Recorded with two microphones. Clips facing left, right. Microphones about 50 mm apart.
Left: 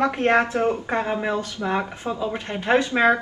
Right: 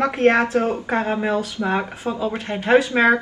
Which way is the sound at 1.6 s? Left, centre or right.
Right.